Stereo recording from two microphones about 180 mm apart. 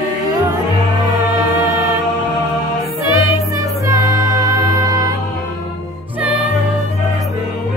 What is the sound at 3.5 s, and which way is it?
Music, 20° right (ahead or behind).